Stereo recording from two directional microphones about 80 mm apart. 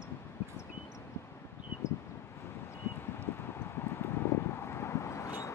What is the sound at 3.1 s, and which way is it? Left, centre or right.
Clip-clop, left.